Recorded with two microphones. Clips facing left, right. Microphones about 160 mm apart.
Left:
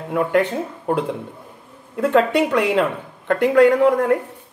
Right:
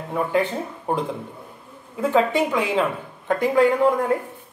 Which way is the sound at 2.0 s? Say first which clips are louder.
Left 3 dB; 75° left (ahead or behind).